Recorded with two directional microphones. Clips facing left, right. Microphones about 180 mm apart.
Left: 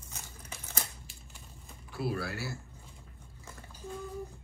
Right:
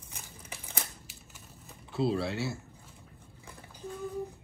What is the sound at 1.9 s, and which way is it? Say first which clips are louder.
Speech: right 5 dB; 25° right (ahead or behind).